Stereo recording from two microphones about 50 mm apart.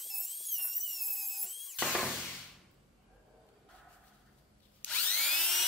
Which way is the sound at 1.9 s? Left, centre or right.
Centre.